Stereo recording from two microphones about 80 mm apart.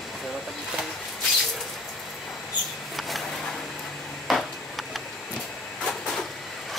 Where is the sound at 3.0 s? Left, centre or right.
Centre.